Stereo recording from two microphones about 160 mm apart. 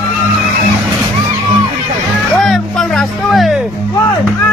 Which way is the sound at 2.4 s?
Centre (ahead or behind).